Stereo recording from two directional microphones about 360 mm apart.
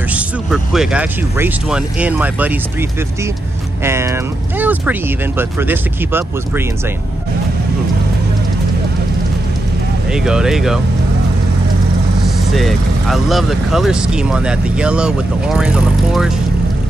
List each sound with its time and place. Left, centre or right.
0.1 s speech: centre
3.8 s speech: centre
10.1 s speech: centre
12.5 s speech: centre